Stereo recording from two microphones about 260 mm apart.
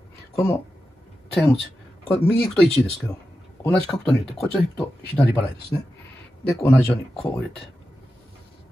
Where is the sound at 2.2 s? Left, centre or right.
Centre.